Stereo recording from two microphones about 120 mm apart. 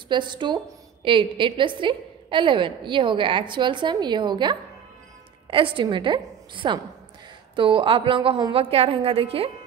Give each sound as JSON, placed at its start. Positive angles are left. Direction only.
{"t": 0.1, "sound": "a woman's voice", "side_deg": -40}